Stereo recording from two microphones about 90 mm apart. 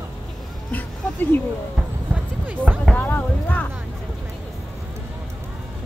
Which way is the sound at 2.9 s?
20° left (ahead or behind).